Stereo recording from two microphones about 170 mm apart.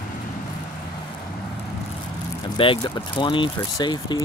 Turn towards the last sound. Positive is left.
turn(degrees=25)  # may be behind; listen again after turning